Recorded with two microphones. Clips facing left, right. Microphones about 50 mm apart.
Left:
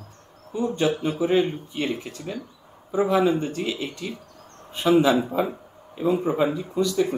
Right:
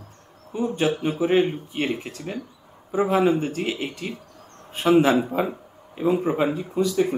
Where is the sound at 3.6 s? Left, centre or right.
Right.